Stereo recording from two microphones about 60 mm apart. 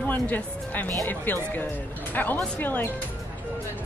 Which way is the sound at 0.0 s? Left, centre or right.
Left.